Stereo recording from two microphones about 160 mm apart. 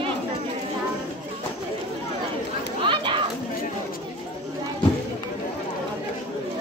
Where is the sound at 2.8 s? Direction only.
30° right (ahead or behind).